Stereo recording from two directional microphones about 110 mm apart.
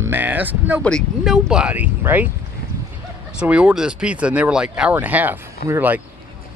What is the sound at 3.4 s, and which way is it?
Speech, 10° right (ahead or behind).